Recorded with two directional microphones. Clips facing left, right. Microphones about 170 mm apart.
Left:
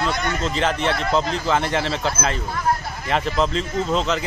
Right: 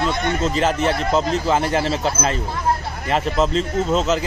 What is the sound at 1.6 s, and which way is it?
Speech, 35° right (ahead or behind).